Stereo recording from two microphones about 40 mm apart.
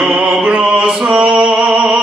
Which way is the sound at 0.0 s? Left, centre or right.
Right.